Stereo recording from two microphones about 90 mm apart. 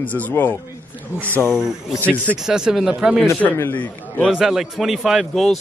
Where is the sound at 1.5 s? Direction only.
5° right (ahead or behind).